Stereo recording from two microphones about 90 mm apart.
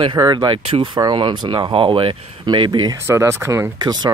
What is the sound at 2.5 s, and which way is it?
Speech, 60° right (ahead or behind).